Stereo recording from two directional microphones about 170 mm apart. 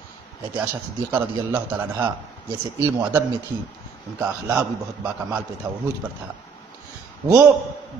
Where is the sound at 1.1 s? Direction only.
10° right (ahead or behind).